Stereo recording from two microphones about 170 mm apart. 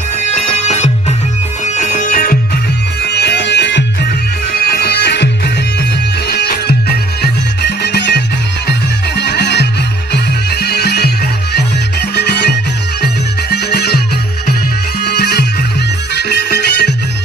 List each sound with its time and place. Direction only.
0.5 s music: 40° left (ahead or behind)
3.1 s music: 85° left
4.5 s music: 65° left (ahead or behind); by 5.3 s 85° left
6.2 s music: 70° left (ahead or behind)
15.0 s music: 75° left (ahead or behind)